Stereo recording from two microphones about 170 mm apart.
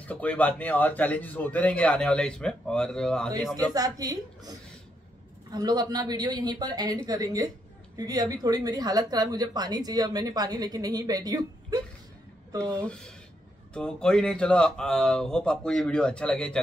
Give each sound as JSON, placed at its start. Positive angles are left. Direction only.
{"t": 0.0, "sound": "a man's voice", "side_deg": 10}
{"t": 3.7, "sound": "speech", "side_deg": -20}
{"t": 12.8, "sound": "speech", "side_deg": 5}